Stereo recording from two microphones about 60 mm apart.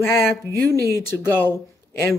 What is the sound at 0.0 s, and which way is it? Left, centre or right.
Speech, left.